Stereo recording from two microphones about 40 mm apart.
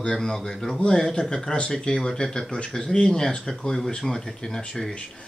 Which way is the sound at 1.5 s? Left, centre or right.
Left.